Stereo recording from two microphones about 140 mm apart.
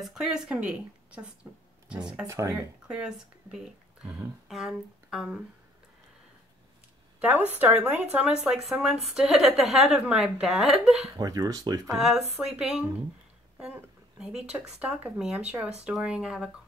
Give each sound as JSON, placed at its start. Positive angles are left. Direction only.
{"t": 0.0, "sound": "speech", "side_deg": -5}
{"t": 2.2, "sound": "speech", "side_deg": -20}
{"t": 2.9, "sound": "speech", "side_deg": -5}
{"t": 7.2, "sound": "speech", "side_deg": -10}
{"t": 11.1, "sound": "speech", "side_deg": -25}
{"t": 12.4, "sound": "speech", "side_deg": -5}